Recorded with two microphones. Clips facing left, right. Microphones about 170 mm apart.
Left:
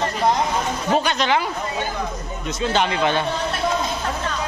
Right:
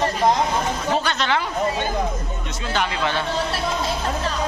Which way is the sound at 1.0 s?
15° left (ahead or behind).